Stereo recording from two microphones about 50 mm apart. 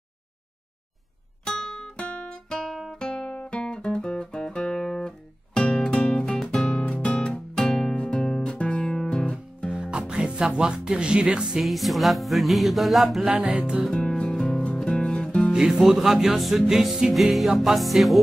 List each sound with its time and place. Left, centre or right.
1.4 s music: centre
2.0 s music: left
2.7 s guitar: centre
3.3 s music: centre
5.7 s music: left
9.7 s music: centre
11.6 s music: centre
13.6 s music: centre
13.8 s music: centre
15.5 s music: centre